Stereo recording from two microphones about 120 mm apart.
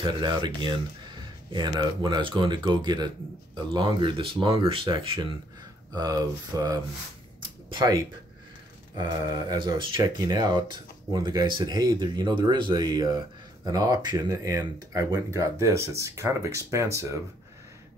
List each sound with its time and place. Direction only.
0.0 s speech: 40° right (ahead or behind)
5.9 s speech: 35° right (ahead or behind)
7.4 s a sound: 45° right (ahead or behind)
9.5 s speech: 35° right (ahead or behind)